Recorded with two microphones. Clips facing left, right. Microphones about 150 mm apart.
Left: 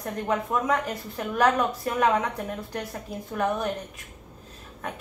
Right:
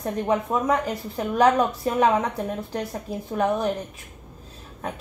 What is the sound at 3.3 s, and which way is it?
Speech, 25° right (ahead or behind).